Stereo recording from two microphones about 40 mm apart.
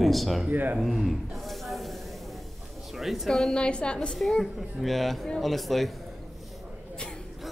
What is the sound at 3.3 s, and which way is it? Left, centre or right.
Speech, centre.